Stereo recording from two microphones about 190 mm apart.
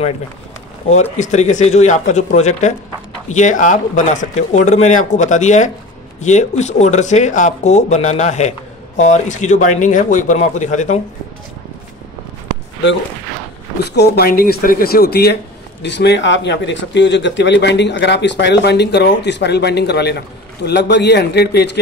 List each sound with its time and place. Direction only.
1.1 s speech: 40° left (ahead or behind)
13.7 s speech: 60° left (ahead or behind)